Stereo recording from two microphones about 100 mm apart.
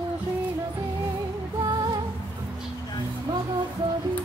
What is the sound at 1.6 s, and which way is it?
Music, 45° right (ahead or behind).